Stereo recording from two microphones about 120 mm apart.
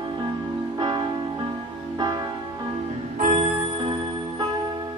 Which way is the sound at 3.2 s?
80° right.